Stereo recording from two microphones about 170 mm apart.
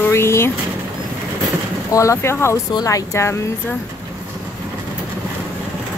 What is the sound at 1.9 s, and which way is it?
Speech, 15° left (ahead or behind).